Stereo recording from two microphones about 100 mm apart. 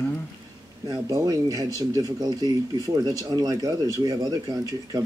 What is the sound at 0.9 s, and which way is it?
Speech, 35° right (ahead or behind).